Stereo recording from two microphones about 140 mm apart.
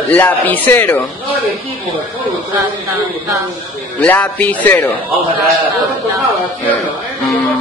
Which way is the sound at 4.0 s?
10° left (ahead or behind).